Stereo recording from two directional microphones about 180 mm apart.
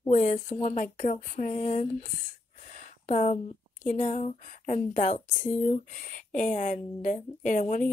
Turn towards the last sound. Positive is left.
turn(degrees=45)  # may be behind; listen again after turning